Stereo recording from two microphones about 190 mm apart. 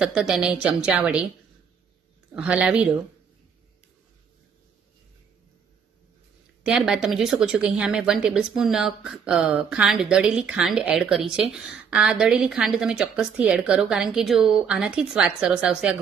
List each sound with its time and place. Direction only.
0.0 s a woman's voice: 5° right (ahead or behind)
2.3 s a woman's voice: 5° right (ahead or behind)
6.6 s a woman's voice: 5° right (ahead or behind)